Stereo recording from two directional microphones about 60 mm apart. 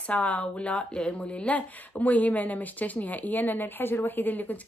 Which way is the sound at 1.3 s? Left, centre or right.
Centre.